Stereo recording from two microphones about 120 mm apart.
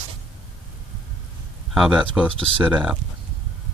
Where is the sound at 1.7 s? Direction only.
5° right (ahead or behind).